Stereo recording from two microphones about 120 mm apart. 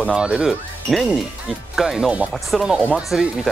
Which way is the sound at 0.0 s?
5° right (ahead or behind).